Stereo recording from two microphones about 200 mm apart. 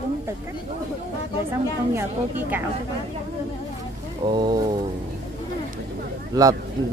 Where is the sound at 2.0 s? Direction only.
10° right (ahead or behind).